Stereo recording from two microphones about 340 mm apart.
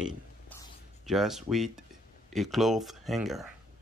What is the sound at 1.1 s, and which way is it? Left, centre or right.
Speech, centre.